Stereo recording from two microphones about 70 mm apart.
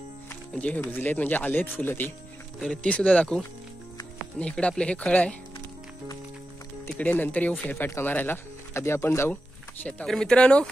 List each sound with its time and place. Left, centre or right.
0.8 s speech: left
2.7 s speech: centre
4.4 s speech: centre
7.0 s speech: left
8.7 s speech: left
10.0 s speech: centre